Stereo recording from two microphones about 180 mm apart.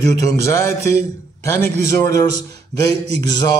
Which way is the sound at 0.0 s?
20° left (ahead or behind).